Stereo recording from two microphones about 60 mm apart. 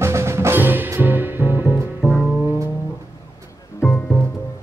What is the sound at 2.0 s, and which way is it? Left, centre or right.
Music, right.